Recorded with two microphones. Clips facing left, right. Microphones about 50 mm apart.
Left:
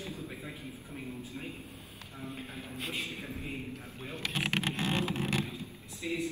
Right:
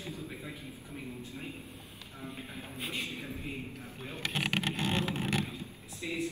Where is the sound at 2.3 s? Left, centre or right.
Centre.